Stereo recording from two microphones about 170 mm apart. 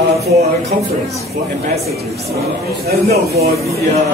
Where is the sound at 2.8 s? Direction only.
65° right (ahead or behind).